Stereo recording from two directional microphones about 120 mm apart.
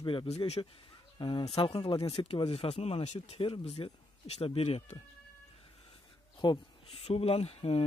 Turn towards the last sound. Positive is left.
turn(degrees=55)  # may be behind; listen again after turning